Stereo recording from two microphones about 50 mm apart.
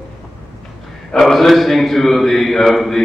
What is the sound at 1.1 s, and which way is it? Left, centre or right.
A man's voice, centre.